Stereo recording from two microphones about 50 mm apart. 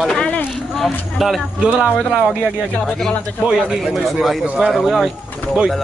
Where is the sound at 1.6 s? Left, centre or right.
Right.